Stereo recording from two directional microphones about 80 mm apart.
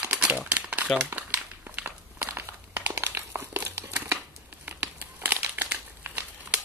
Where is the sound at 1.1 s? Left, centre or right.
Right.